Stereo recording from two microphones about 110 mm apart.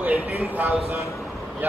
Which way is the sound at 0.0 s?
15° right (ahead or behind).